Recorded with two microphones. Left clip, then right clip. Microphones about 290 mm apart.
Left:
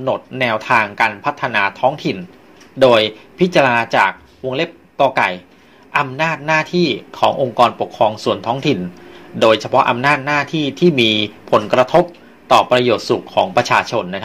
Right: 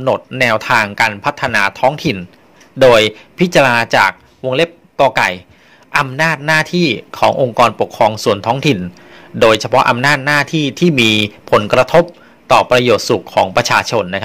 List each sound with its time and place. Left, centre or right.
0.0 s a man's voice: right